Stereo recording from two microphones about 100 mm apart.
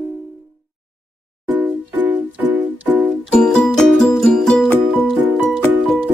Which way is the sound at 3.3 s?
10° left (ahead or behind).